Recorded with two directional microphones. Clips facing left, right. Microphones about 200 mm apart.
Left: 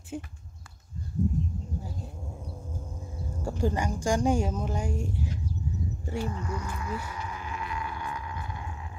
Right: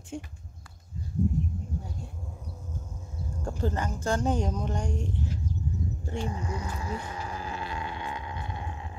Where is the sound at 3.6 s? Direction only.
15° left (ahead or behind).